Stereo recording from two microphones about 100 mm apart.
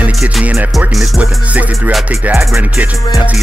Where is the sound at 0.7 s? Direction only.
5° right (ahead or behind).